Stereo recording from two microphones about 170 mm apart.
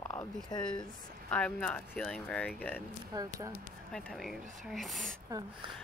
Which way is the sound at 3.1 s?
20° right (ahead or behind).